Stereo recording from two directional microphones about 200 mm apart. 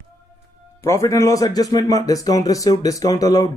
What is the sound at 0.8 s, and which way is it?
Speech, 15° left (ahead or behind).